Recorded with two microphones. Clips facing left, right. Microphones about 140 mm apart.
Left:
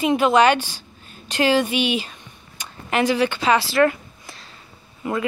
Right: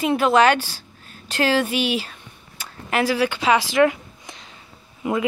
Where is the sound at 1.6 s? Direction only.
5° right (ahead or behind).